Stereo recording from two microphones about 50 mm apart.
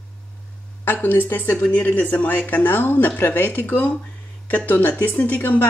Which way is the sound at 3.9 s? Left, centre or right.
Left.